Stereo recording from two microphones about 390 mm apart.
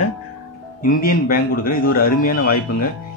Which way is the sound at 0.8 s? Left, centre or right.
Left.